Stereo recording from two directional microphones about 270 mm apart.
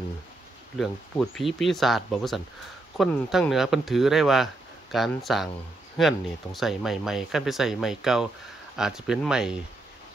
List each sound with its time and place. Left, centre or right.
0.7 s speech: centre